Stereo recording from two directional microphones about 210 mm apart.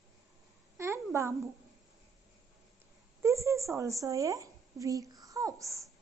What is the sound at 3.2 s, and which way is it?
A woman's voice, 15° right (ahead or behind).